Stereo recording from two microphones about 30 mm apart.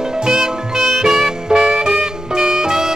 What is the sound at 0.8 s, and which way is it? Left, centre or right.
Music, centre.